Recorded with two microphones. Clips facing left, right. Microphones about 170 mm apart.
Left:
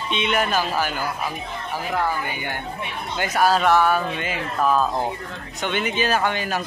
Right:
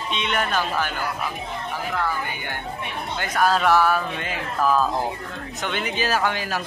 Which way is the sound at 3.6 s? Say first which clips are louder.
Left 1 dB; 5° right (ahead or behind).